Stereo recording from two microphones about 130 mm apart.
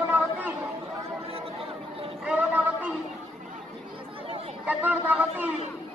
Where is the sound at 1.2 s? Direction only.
45° right (ahead or behind).